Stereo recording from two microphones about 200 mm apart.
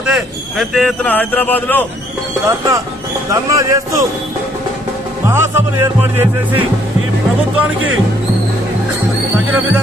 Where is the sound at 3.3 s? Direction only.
15° right (ahead or behind).